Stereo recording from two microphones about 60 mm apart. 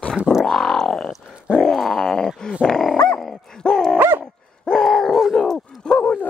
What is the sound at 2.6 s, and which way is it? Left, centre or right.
Dog, centre.